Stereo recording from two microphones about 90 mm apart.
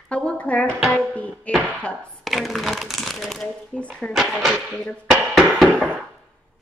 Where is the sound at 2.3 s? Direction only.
Centre (ahead or behind).